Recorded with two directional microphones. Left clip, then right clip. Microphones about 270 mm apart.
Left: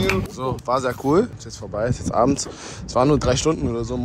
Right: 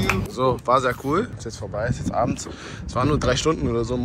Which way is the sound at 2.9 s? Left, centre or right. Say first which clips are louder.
Left 4 dB; left.